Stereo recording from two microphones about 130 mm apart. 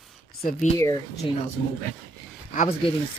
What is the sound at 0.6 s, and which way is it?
Speech, 70° left (ahead or behind).